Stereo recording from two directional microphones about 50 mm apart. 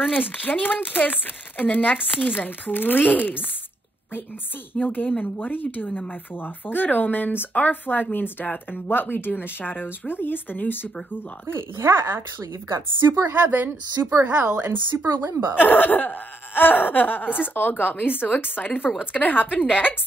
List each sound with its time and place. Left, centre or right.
0.1 s speech: left
4.7 s speech: left
11.4 s speech: right
12.6 s speech: right
13.3 s speech: right
15.6 s speech: left